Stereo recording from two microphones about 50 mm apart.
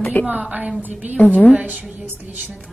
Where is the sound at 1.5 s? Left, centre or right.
Right.